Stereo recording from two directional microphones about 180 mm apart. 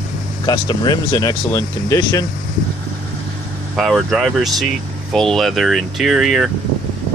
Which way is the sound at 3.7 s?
Centre (ahead or behind).